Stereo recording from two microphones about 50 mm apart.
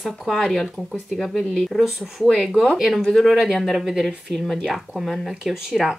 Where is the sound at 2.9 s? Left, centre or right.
Centre.